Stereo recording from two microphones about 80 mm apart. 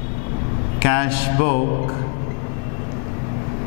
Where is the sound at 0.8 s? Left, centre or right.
Centre.